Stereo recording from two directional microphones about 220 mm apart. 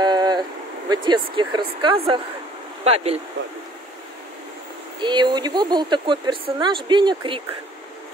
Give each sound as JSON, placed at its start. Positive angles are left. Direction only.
{"t": 0.0, "sound": "a sound", "side_deg": -20}
{"t": 0.8, "sound": "speech", "side_deg": -20}
{"t": 5.0, "sound": "speech", "side_deg": -20}